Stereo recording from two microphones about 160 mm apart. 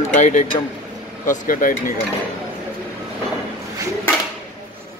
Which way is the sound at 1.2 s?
55° left (ahead or behind).